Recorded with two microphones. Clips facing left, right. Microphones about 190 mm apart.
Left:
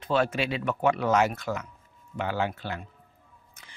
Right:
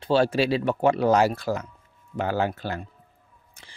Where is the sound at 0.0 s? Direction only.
30° right (ahead or behind).